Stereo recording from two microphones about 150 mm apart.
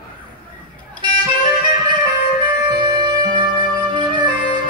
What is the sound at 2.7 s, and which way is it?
Music, 30° right (ahead or behind).